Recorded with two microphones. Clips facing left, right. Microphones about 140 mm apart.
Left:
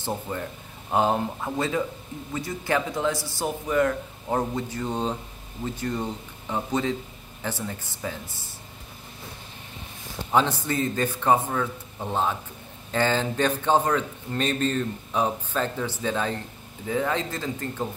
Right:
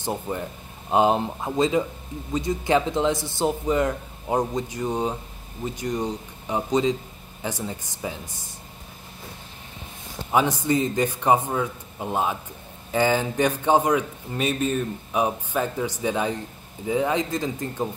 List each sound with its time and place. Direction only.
0.0 s a man's voice: 15° right (ahead or behind)
10.3 s a man's voice: 15° right (ahead or behind)